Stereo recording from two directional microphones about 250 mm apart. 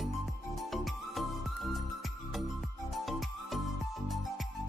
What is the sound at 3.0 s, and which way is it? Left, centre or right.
Music, centre.